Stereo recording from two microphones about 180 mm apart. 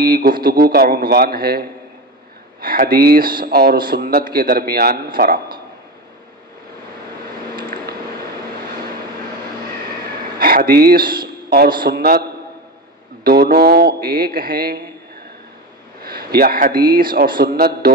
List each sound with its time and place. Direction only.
0.0 s a man's voice: 55° right (ahead or behind)
2.6 s a man's voice: 55° right (ahead or behind)
10.4 s a man's voice: 55° right (ahead or behind)
13.2 s a man's voice: 60° right (ahead or behind)
16.0 s a man's voice: 55° right (ahead or behind)